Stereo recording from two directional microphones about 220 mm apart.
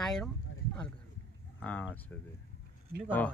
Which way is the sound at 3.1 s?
10° left (ahead or behind).